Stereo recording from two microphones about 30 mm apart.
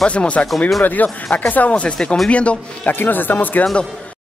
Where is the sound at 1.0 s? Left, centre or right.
Left.